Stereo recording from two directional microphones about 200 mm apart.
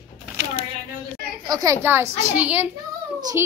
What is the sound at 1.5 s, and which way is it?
A woman's voice, 15° right (ahead or behind).